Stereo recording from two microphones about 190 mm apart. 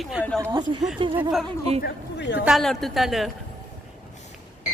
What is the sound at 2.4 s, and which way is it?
Speech, centre (ahead or behind).